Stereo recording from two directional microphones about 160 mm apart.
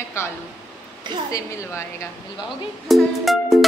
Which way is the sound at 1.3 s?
20° left (ahead or behind).